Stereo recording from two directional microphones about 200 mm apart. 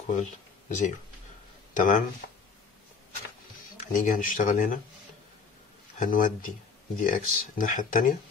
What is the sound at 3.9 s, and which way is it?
Speech, 40° left (ahead or behind).